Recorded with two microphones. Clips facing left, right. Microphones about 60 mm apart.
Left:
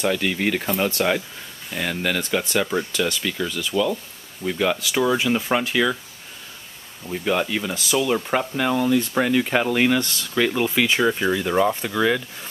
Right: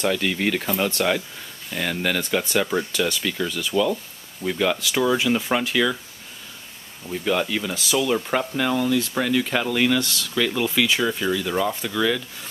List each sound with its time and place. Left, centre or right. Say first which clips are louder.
0.0 s speech: even; centre
7.1 s speech: left 1 dB; centre